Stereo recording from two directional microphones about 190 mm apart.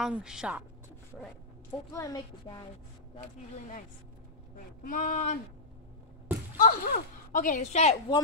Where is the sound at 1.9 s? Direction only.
20° left (ahead or behind).